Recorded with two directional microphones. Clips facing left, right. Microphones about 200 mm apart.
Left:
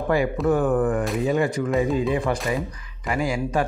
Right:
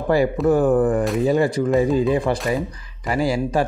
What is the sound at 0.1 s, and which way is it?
Speech, 35° right (ahead or behind).